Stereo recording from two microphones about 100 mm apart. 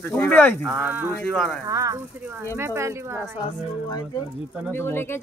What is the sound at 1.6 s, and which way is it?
Speech, 35° right (ahead or behind).